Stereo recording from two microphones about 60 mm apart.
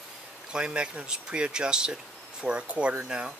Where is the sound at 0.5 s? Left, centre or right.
Centre.